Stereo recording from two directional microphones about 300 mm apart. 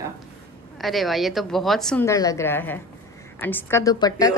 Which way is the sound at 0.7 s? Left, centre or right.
Centre.